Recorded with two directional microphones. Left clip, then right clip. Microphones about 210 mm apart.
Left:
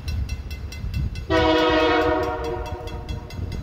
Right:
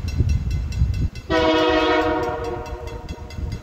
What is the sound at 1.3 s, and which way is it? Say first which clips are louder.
Train: right 1 dB; 20° right (ahead or behind).